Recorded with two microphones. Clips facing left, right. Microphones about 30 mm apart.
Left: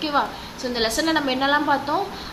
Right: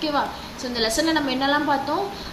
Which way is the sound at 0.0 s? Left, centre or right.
Centre.